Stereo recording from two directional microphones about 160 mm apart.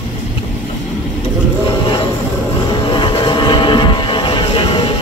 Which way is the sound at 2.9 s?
30° left (ahead or behind).